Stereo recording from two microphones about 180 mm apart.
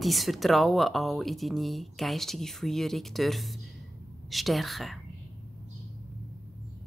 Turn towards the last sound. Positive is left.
turn(degrees=0)  # may be behind; listen again after turning